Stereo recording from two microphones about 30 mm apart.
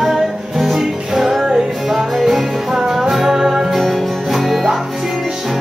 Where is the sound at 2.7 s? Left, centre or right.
Centre.